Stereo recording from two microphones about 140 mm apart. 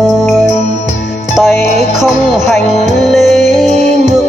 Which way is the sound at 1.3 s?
5° right (ahead or behind).